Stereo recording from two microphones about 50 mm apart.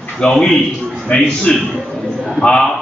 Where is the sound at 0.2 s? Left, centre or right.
Centre.